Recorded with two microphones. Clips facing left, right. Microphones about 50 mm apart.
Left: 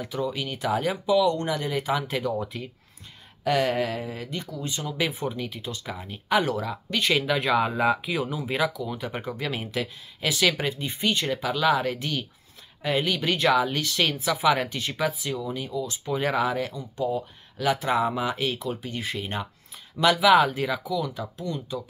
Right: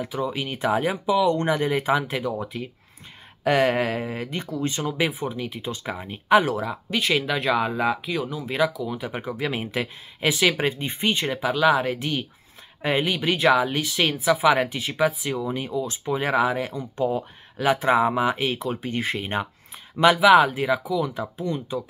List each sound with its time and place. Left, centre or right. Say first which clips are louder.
0.0 s speech: right 2 dB; centre
2.0 s speech: even; centre
3.4 s speech: right 3 dB; right
5.1 s speech: right 1 dB; centre
5.6 s speech: right 4 dB; right
6.4 s speech: right 2 dB; centre
9.6 s speech: right 2 dB; right
15.4 s speech: right 3 dB; right
16.1 s speech: right 3 dB; centre
16.7 s speech: right 3 dB; right
20.2 s speech: right 2 dB; centre; by 21.7 s right